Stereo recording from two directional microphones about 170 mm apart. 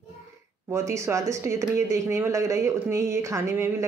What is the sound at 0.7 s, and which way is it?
A woman's voice, 15° right (ahead or behind).